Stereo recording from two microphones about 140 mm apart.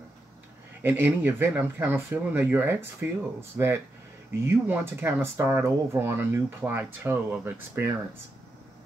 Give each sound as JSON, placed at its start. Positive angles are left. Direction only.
{"t": 0.8, "sound": "speech", "side_deg": -15}